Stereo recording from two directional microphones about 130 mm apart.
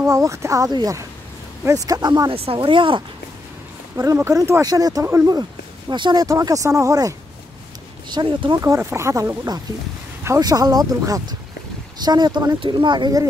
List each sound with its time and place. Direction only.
0.0 s speech: 20° right (ahead or behind)
2.3 s speech: 45° right (ahead or behind)
3.9 s speech: 20° right (ahead or behind)
5.9 s speech: 35° right (ahead or behind)
6.2 s speech: 25° right (ahead or behind)
8.1 s speech: 35° right (ahead or behind)
8.5 s speech: 25° right (ahead or behind)